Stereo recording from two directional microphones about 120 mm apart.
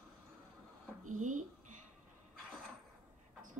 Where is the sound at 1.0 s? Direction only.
90° right.